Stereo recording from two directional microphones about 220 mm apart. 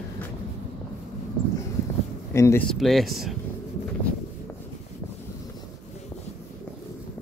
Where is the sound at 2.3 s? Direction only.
15° left (ahead or behind).